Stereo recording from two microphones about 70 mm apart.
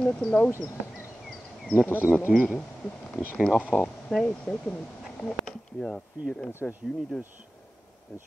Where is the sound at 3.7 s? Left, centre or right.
Left.